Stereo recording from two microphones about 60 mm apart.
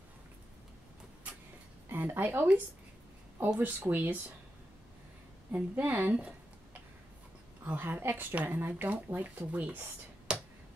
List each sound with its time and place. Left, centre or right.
1.9 s speech: right
5.5 s speech: right
7.6 s speech: right
10.3 s a sound: centre